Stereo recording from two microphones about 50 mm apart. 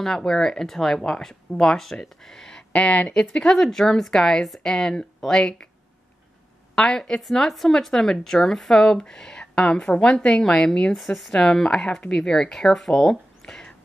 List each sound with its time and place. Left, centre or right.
0.0 s speech: centre
2.7 s speech: left
3.4 s speech: centre
6.7 s speech: centre
11.0 s speech: centre
11.3 s speech: centre